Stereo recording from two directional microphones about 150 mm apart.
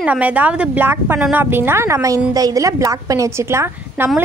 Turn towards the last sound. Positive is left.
turn(degrees=-20)  # may be behind; listen again after turning